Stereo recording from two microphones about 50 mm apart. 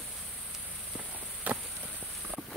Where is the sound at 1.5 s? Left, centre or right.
Right.